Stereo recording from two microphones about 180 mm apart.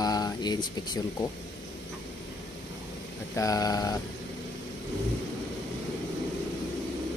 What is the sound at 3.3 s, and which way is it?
Speech, 20° left (ahead or behind).